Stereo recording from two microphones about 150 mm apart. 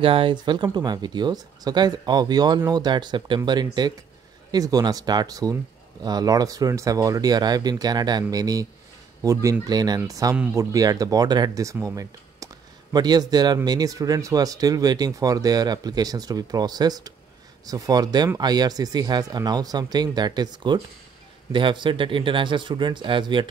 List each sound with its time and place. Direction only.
0.0 s speech: 35° right (ahead or behind)